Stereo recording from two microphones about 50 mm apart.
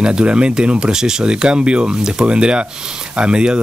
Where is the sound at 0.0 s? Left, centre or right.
Right.